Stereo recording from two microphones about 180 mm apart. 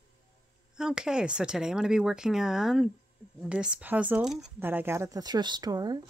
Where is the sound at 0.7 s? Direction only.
5° right (ahead or behind).